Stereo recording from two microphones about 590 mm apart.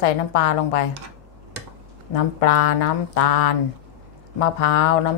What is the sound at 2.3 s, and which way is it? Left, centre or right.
A woman's voice, left.